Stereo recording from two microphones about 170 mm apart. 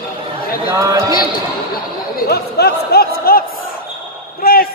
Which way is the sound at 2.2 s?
70° left (ahead or behind).